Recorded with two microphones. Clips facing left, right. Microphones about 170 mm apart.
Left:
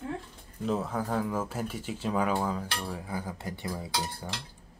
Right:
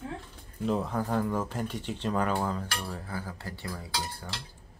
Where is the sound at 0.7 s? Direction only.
Centre (ahead or behind); by 4.3 s 20° left (ahead or behind).